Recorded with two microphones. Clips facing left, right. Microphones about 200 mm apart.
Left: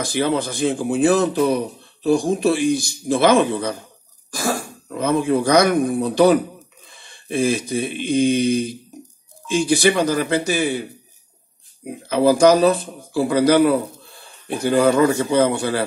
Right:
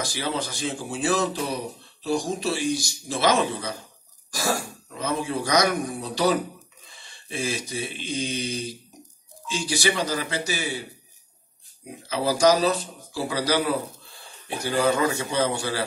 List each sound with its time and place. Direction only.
0.0 s speech: 55° left (ahead or behind)
6.9 s mantra: 55° left (ahead or behind)
9.5 s speech: 55° left (ahead or behind)